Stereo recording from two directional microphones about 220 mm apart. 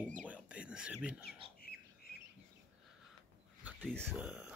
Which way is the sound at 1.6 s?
45° left (ahead or behind).